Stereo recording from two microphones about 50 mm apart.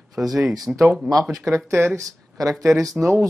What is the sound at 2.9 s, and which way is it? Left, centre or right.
Speech, right.